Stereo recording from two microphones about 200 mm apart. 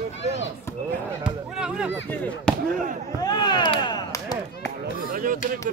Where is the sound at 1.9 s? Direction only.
10° left (ahead or behind).